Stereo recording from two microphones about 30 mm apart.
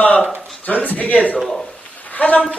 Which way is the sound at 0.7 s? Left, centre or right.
Left.